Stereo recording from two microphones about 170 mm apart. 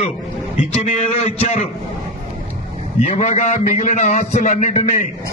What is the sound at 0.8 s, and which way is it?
Speech, 40° left (ahead or behind).